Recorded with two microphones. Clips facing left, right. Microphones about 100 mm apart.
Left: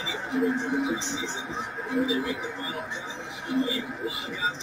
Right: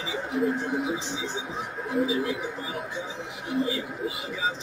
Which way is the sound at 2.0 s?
Centre (ahead or behind).